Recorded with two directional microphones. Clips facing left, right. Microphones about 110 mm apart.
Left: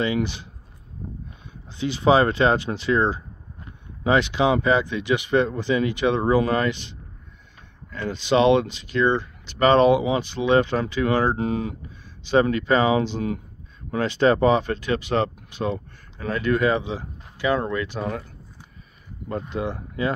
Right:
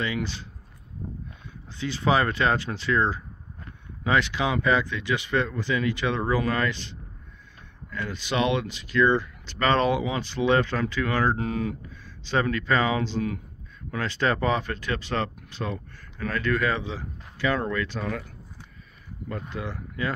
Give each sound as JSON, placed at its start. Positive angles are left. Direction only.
{"t": 0.0, "sound": "speech", "side_deg": 20}
{"t": 1.8, "sound": "speech", "side_deg": 20}
{"t": 19.5, "sound": "speech", "side_deg": 20}